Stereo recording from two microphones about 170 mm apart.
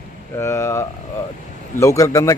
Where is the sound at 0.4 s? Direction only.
15° left (ahead or behind).